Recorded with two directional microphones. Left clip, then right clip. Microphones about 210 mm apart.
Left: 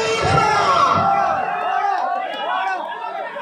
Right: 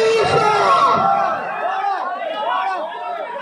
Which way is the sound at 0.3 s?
40° right (ahead or behind).